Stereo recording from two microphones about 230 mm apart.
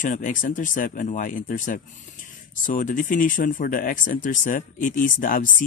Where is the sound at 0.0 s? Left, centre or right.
Left.